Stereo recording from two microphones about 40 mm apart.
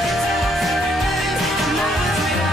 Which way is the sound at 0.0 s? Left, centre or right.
Centre.